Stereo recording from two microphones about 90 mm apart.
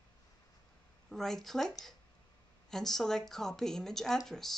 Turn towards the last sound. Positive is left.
turn(degrees=5)  # may be behind; listen again after turning